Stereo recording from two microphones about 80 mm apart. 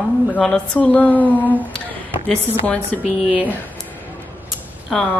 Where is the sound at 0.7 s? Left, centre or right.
Left.